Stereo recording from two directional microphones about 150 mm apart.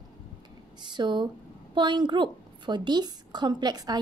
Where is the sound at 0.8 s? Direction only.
30° right (ahead or behind).